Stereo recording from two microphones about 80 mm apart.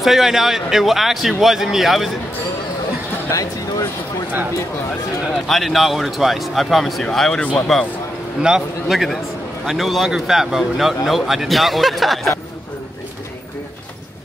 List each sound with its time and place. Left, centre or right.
0.0 s a man's voice: centre
3.3 s a sound: left
5.5 s a man's voice: centre